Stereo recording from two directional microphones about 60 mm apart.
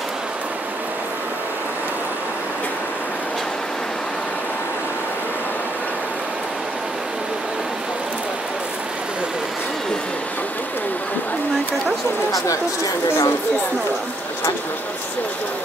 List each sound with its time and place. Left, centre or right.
12.3 s speech: left